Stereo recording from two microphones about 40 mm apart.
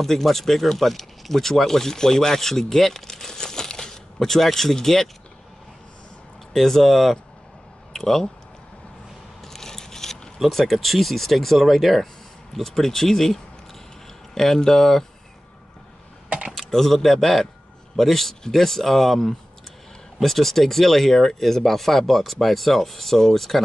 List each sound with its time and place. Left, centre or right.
0.0 s speech: centre
6.5 s speech: centre
9.4 s biting: centre
10.4 s speech: centre
16.3 s computer keyboard: right
16.5 s speech: centre